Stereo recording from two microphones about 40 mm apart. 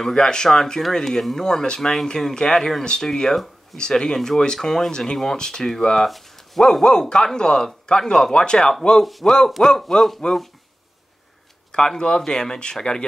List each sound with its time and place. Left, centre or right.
0.1 s speech: centre
5.9 s speech: centre
6.8 s speech: centre
11.7 s speech: left